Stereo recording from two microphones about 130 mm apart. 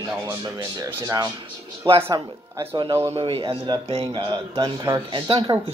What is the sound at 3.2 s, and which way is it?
Speech, 45° right (ahead or behind).